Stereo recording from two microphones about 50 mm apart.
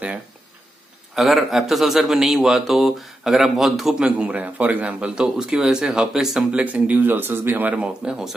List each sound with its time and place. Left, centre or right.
1.1 s speech: centre
4.0 s speech: right; by 6.4 s centre
6.5 s a man's voice: right
7.7 s speech: right